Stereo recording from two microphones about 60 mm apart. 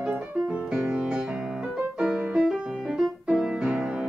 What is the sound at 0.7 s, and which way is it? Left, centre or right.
Music, centre.